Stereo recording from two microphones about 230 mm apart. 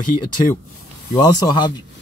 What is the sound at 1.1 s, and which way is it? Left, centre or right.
Speech, centre.